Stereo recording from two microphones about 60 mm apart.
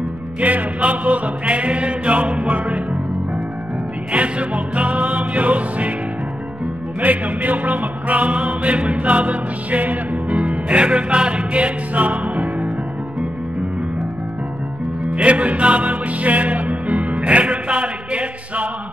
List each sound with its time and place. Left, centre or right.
0.4 s music: right
4.1 s music: right
7.0 s music: right
15.0 s music: right